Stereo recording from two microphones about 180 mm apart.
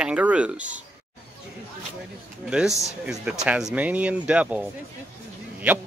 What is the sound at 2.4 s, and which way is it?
Speech, 5° right (ahead or behind).